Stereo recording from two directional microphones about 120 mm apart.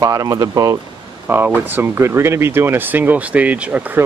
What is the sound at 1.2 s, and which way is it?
Speech, 15° right (ahead or behind).